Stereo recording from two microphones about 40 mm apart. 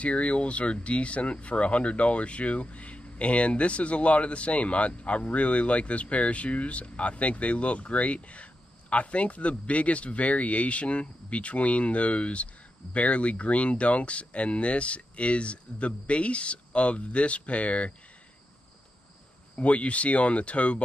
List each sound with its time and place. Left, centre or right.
0.0 s speech: left
19.5 s speech: left